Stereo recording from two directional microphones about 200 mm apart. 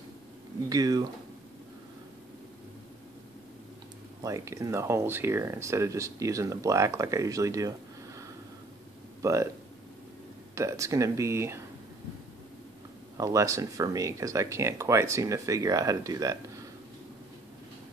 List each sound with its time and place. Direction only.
0.7 s speech: 20° right (ahead or behind)
4.2 s speech: 15° right (ahead or behind)
9.2 s speech: 15° right (ahead or behind)
10.5 s speech: 15° right (ahead or behind)
13.2 s speech: 15° right (ahead or behind)